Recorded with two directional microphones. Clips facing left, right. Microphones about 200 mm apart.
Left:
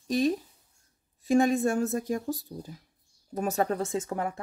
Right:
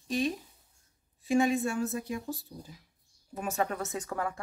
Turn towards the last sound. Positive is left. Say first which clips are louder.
# left 4 dB
turn(degrees=25)  # may be behind; listen again after turning